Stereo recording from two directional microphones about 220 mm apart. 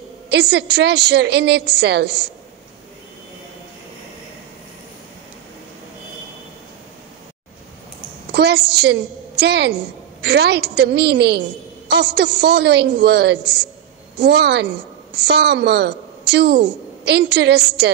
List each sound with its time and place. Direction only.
0.3 s a woman's voice: 50° right (ahead or behind)
8.3 s a woman's voice: 50° right (ahead or behind)